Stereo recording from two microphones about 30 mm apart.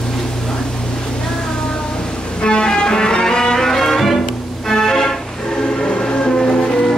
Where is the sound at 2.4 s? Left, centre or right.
Left; by 4.1 s centre.